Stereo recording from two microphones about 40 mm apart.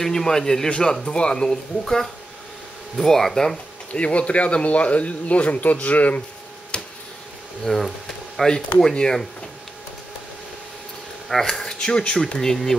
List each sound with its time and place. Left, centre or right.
0.0 s speech: centre
0.7 s speech: left
3.9 s speech: left
6.7 s a sound: left
7.6 s speech: centre
11.2 s speech: centre